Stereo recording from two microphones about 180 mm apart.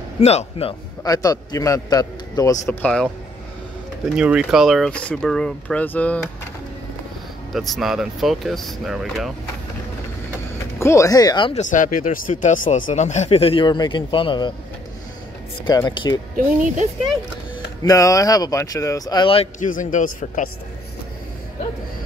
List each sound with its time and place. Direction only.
0.2 s speech: 35° left (ahead or behind)
1.0 s a man's voice: 20° left (ahead or behind)
4.1 s speech: 5° right (ahead or behind)
7.5 s speech: centre (ahead or behind)
10.8 s a man's voice: 15° left (ahead or behind)
11.5 s speech: 45° left (ahead or behind); by 14.5 s 25° left (ahead or behind)
15.6 s a man's voice: 25° left (ahead or behind)
17.8 s a man's voice: 20° left (ahead or behind)
19.6 s speech: 45° left (ahead or behind)